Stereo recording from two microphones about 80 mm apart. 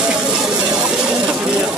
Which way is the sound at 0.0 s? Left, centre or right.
Centre.